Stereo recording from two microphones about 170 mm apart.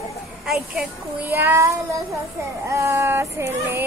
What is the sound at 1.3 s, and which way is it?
Female singing, 15° right (ahead or behind).